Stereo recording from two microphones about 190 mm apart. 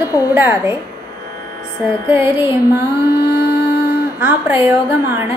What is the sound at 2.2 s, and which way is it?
Speech, 15° right (ahead or behind).